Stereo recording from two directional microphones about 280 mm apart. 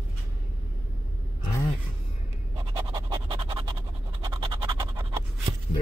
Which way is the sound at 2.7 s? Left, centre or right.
Centre.